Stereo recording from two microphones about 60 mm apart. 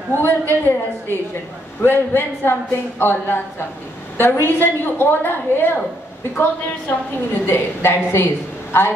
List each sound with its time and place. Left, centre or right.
0.1 s a woman's voice: left
7.4 s a woman's voice: left